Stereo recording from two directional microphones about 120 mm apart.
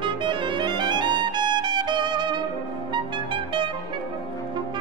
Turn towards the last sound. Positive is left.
turn(degrees=-45)  # may be behind; listen again after turning